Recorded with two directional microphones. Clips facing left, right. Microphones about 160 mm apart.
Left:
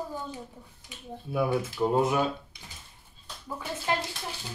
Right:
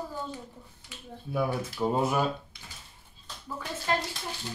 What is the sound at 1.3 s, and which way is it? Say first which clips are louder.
Speech: left 2 dB; centre (ahead or behind).